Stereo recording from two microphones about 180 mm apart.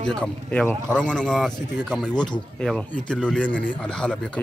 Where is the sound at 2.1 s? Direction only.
25° left (ahead or behind).